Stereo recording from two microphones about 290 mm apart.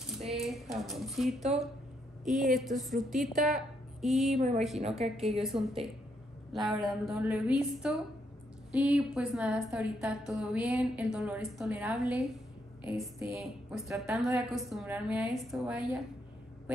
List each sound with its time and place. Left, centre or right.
0.0 s a woman's voice: centre
4.4 s a woman's voice: right
5.2 s a woman's voice: centre